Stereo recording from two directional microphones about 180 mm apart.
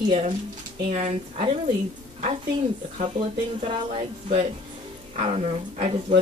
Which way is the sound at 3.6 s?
30° right (ahead or behind).